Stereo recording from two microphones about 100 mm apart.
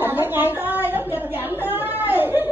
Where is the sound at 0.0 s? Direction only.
20° right (ahead or behind).